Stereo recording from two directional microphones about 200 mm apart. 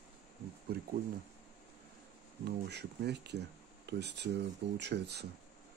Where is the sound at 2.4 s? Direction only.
55° right (ahead or behind).